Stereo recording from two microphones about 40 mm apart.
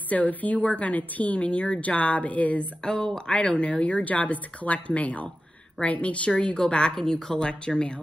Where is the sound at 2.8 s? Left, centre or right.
Left.